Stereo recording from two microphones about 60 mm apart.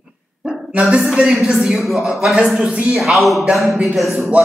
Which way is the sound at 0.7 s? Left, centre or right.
Right.